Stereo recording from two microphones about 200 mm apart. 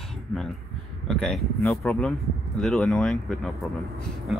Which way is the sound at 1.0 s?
5° left (ahead or behind).